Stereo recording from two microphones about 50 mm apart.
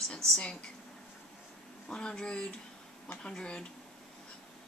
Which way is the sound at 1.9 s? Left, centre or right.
Centre.